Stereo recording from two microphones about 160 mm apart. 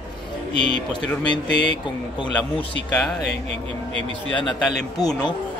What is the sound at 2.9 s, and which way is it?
Speech, 5° left (ahead or behind).